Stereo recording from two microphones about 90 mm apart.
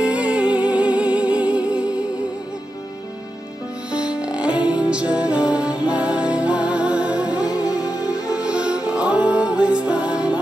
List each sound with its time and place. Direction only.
0.0 s music: 15° right (ahead or behind)
3.9 s music: 10° right (ahead or behind)
7.6 s music: 40° left (ahead or behind)
8.4 s music: 10° right (ahead or behind)